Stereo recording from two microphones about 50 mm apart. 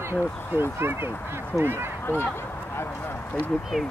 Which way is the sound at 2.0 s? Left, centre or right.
Left.